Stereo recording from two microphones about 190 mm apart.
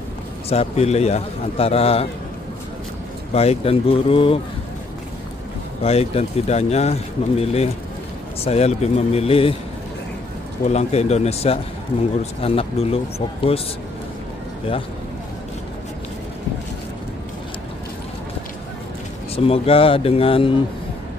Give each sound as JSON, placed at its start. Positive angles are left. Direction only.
{"t": 0.5, "sound": "speech", "side_deg": 35}
{"t": 3.3, "sound": "speech", "side_deg": 30}
{"t": 5.8, "sound": "speech", "side_deg": 35}
{"t": 10.6, "sound": "speech", "side_deg": 35}
{"t": 19.3, "sound": "speech", "side_deg": 30}